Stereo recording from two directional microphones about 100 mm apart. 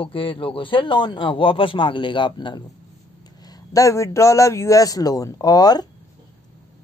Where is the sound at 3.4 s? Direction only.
35° left (ahead or behind).